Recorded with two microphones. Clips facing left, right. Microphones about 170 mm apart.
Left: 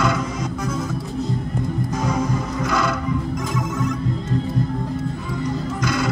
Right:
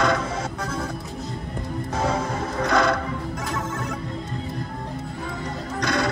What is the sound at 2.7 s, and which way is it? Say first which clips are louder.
Music: right 2 dB; 70° right (ahead or behind).